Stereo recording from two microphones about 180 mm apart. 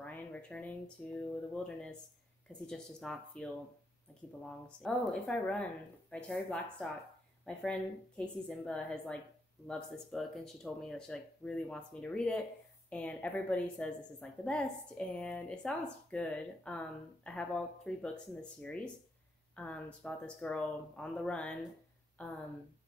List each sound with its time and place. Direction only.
0.0 s a woman's voice: 10° left (ahead or behind)